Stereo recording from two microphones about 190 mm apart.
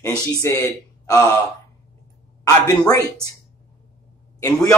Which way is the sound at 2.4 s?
20° left (ahead or behind).